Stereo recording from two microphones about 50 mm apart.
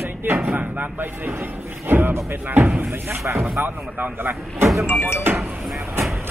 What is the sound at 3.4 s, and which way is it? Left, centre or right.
Speech, right.